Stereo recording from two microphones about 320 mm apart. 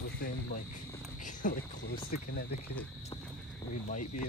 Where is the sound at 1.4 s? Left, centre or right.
Left.